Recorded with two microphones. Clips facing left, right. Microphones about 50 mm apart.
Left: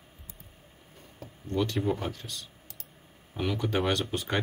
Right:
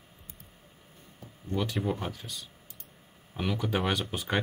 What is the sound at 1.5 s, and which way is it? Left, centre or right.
Speech, centre.